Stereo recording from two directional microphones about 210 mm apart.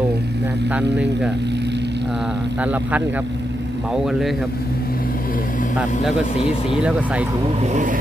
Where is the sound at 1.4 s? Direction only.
55° right (ahead or behind).